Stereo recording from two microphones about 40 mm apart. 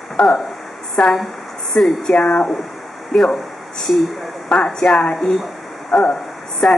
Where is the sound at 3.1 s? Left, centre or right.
Centre.